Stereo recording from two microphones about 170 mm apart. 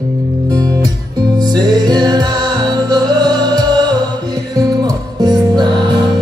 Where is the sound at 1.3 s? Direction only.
20° right (ahead or behind).